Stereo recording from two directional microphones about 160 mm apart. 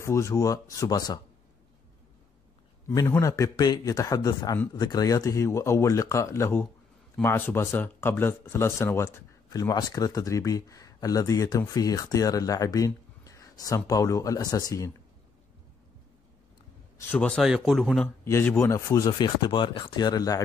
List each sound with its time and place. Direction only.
0.0 s speech: 20° left (ahead or behind)
2.9 s speech: 20° left (ahead or behind)
17.1 s speech: 5° left (ahead or behind)
18.0 s speech: 15° left (ahead or behind)